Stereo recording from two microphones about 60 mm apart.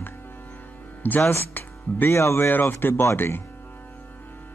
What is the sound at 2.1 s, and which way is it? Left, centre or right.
A man's voice, left.